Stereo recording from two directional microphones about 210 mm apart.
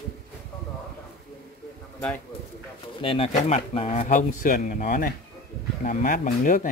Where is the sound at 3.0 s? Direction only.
25° left (ahead or behind).